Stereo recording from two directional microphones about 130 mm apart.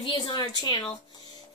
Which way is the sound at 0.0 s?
35° left (ahead or behind).